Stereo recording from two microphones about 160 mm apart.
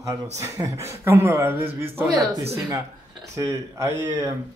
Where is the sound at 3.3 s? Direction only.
20° right (ahead or behind).